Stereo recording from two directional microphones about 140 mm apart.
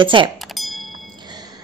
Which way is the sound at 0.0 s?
35° right (ahead or behind).